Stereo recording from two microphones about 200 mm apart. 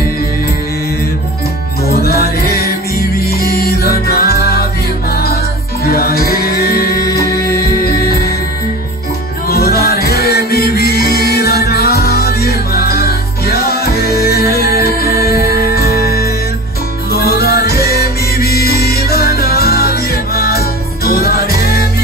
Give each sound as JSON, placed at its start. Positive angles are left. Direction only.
{"t": 1.9, "sound": "music", "side_deg": 50}
{"t": 9.5, "sound": "music", "side_deg": 50}